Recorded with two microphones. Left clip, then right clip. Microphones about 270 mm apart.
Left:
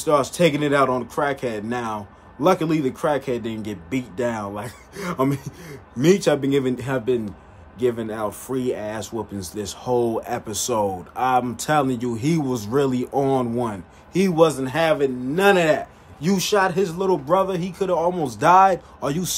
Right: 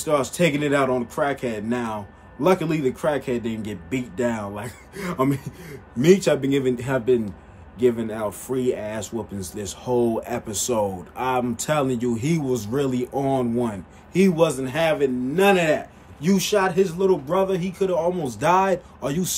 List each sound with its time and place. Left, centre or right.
0.0 s speech: centre